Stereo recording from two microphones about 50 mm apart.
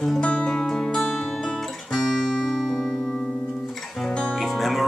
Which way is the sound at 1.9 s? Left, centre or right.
Centre.